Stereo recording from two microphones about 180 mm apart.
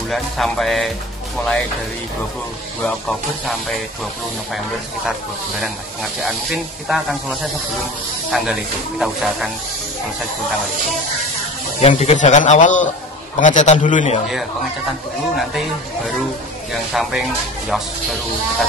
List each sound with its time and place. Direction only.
0.1 s speech: centre (ahead or behind)
2.8 s speech: 5° left (ahead or behind)
6.2 s speech: centre (ahead or behind)
11.8 s a man's voice: 35° left (ahead or behind)
14.9 s speech: centre (ahead or behind)